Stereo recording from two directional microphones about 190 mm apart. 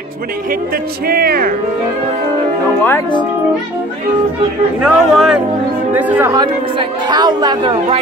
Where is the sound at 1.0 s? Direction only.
50° right (ahead or behind).